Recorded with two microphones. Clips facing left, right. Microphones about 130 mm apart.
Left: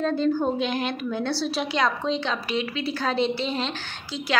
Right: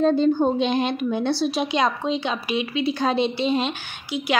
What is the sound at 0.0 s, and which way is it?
A woman's voice, 20° right (ahead or behind).